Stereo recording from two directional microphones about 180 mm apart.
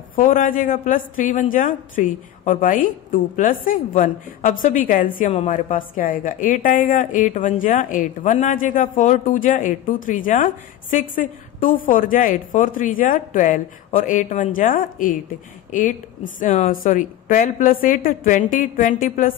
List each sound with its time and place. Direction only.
0.1 s a woman's voice: 50° left (ahead or behind)